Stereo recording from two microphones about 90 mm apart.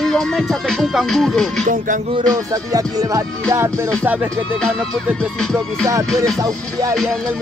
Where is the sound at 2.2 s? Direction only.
40° right (ahead or behind); by 4.3 s 20° right (ahead or behind).